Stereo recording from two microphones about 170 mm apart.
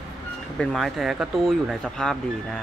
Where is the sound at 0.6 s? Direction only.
Centre (ahead or behind).